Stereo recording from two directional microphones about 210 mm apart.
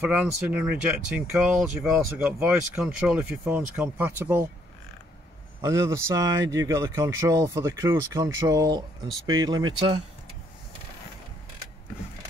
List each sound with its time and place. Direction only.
0.0 s speech: 5° right (ahead or behind)
5.6 s speech: 15° right (ahead or behind)